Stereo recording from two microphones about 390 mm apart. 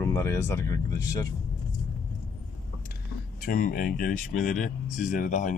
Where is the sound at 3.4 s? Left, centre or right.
Left.